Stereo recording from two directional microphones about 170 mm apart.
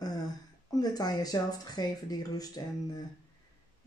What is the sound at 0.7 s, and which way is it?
Speech, 20° left (ahead or behind).